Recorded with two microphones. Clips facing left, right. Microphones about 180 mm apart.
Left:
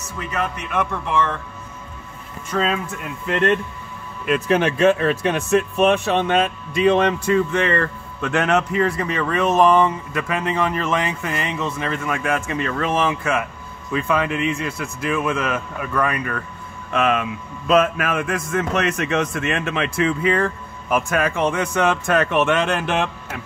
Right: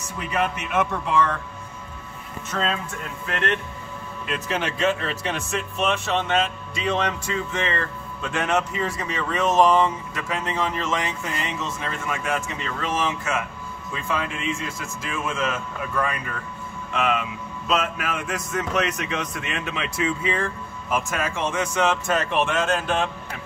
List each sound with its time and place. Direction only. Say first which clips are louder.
0.2 s speech: even; 10° right (ahead or behind)
2.5 s speech: left 5 dB; 5° left (ahead or behind)
4.3 s speech: left 9 dB; 55° left (ahead or behind)
16.9 s speech: left 4 dB; 55° left (ahead or behind)